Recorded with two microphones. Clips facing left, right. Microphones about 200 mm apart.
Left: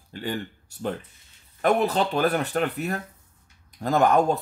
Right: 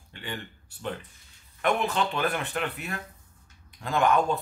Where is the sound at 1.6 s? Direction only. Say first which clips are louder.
Left 5 dB; 40° left (ahead or behind).